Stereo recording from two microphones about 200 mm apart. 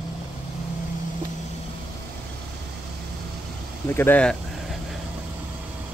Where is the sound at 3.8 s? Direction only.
10° left (ahead or behind).